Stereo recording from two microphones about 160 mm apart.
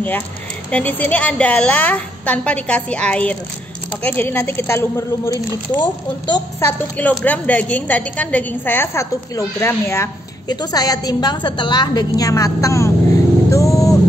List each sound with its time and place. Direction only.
0.7 s a woman's voice: 10° left (ahead or behind); by 6.4 s 25° left (ahead or behind)
6.6 s a woman's voice: 10° left (ahead or behind)